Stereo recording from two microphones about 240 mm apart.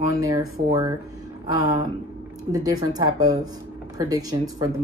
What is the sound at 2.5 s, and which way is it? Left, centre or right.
Speech, centre.